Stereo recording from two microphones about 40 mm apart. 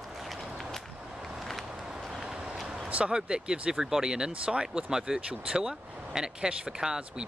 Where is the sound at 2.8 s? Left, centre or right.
Right.